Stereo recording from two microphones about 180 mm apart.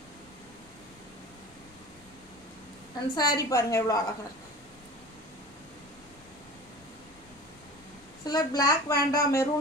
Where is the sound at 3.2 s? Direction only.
20° left (ahead or behind).